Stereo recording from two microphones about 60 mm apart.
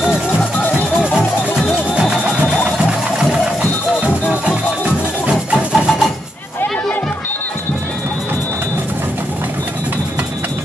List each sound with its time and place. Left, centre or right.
0.6 s music: left
2.0 s music: centre
4.0 s music: centre